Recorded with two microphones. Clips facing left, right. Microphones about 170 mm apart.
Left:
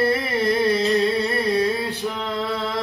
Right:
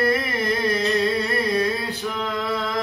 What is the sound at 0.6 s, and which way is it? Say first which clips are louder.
Carnatic music: even; 30° left (ahead or behind).